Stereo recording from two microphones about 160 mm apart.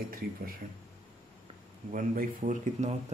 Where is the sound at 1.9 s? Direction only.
55° right (ahead or behind).